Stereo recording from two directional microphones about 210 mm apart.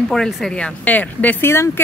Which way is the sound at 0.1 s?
Centre (ahead or behind).